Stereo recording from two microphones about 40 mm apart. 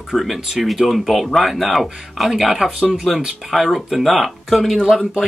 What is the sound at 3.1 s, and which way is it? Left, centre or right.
Speech, centre.